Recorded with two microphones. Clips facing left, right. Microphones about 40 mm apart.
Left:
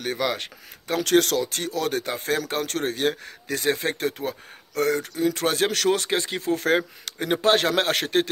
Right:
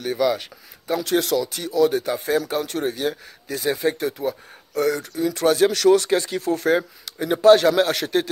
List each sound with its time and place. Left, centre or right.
0.0 s speech: left